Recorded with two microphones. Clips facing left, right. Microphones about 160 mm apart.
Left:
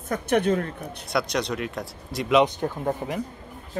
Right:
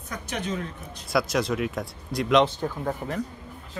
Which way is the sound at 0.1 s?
55° left (ahead or behind).